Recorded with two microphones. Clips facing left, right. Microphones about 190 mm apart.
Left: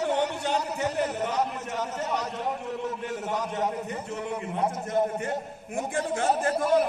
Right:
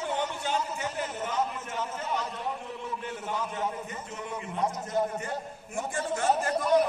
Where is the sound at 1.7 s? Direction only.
40° left (ahead or behind).